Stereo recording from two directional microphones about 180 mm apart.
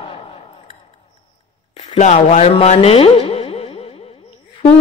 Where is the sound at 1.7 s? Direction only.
35° left (ahead or behind).